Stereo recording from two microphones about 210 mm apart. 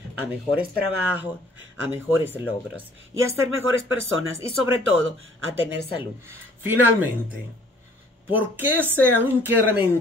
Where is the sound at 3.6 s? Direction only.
65° right (ahead or behind).